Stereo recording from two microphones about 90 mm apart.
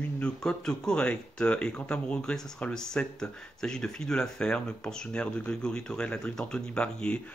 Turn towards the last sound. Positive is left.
turn(degrees=10)  # may be behind; listen again after turning